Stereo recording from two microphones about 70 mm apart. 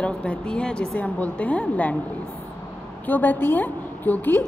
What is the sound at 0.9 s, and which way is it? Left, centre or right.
A woman's voice, left.